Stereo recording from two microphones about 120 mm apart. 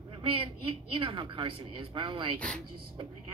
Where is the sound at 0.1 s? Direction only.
45° right (ahead or behind).